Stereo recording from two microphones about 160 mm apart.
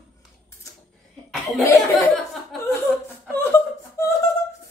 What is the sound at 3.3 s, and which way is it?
Whimper, 15° left (ahead or behind).